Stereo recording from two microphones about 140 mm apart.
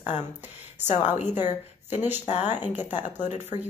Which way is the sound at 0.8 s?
55° left (ahead or behind).